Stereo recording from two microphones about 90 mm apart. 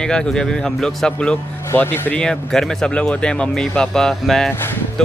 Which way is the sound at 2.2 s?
5° left (ahead or behind).